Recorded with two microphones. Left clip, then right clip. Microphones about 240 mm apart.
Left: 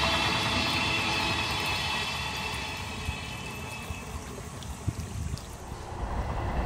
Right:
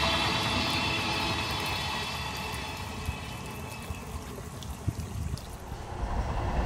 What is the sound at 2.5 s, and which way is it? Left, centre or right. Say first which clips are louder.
Music: left 2 dB; centre.